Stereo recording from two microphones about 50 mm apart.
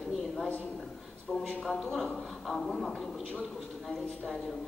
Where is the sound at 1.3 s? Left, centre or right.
Centre.